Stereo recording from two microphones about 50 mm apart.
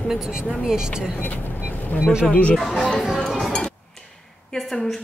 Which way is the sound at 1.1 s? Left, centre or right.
Left.